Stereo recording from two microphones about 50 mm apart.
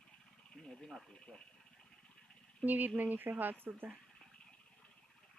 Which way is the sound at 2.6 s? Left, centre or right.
Right.